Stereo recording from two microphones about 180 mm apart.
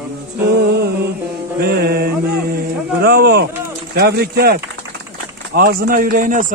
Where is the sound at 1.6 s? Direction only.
60° right (ahead or behind).